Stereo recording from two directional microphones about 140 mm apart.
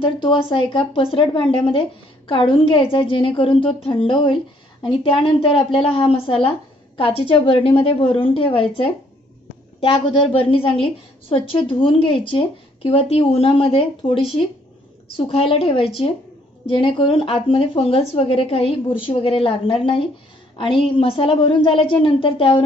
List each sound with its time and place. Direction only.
0.0 s speech: 35° left (ahead or behind)
10.3 s speech: 40° left (ahead or behind)